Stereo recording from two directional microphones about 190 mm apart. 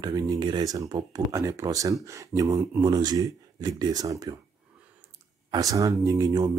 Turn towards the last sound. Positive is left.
turn(degrees=-20)  # may be behind; listen again after turning